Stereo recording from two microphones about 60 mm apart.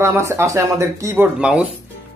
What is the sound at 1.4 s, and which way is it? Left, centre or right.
Speech, centre.